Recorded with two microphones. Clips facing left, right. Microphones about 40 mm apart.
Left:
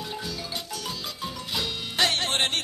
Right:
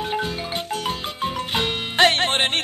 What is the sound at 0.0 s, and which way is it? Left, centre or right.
Marimba, right.